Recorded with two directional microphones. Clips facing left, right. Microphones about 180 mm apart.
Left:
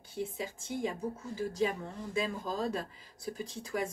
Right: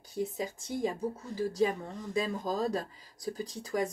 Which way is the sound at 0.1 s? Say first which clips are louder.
Right 3 dB; 40° right (ahead or behind).